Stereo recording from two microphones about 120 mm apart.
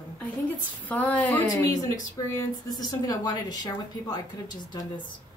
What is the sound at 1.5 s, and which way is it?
Speech, 30° left (ahead or behind).